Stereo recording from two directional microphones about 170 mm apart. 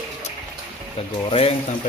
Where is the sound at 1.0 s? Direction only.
35° left (ahead or behind).